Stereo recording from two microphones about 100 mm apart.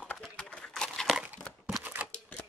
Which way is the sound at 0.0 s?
10° left (ahead or behind).